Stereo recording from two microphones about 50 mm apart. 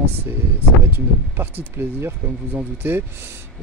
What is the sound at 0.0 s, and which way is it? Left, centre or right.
Speech, right.